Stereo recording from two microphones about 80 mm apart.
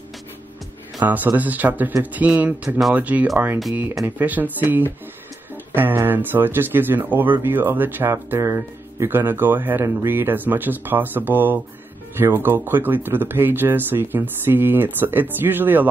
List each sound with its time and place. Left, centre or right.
1.0 s speech: right
6.0 s speech: right